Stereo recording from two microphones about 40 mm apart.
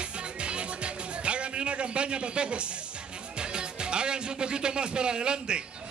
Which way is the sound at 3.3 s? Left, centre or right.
Right.